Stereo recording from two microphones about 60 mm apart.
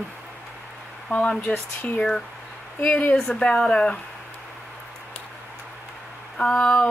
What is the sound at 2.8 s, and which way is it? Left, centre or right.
Speech, left.